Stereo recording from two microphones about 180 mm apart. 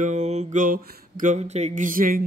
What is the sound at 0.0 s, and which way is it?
Mantra, 40° right (ahead or behind).